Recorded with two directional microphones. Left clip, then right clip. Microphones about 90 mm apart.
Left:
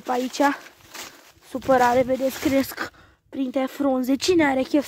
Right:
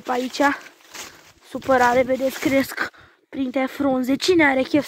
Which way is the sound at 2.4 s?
30° left (ahead or behind).